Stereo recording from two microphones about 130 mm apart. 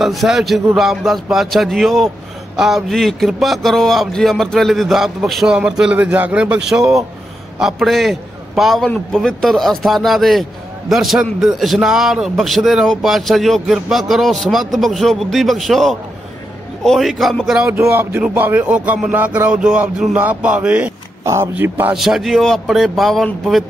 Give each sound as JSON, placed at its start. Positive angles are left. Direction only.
{"t": 0.0, "sound": "speech", "side_deg": 0}
{"t": 17.7, "sound": "speech", "side_deg": -20}
{"t": 21.2, "sound": "speech", "side_deg": -20}
{"t": 21.9, "sound": "speech", "side_deg": 0}